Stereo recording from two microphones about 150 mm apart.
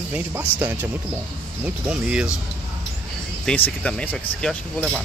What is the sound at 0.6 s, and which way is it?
Speech, 10° right (ahead or behind).